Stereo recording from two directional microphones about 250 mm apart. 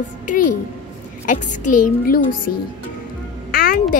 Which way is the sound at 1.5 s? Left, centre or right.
Left.